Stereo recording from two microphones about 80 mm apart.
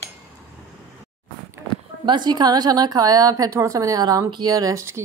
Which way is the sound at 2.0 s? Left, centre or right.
Right.